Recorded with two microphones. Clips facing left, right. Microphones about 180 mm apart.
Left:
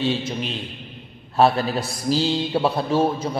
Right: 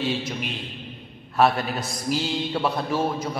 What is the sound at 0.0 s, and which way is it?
A man's voice, 25° left (ahead or behind).